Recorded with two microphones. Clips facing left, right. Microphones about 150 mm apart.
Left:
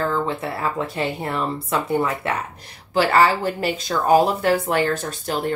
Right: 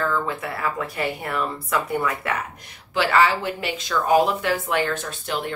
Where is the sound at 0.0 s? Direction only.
30° left (ahead or behind).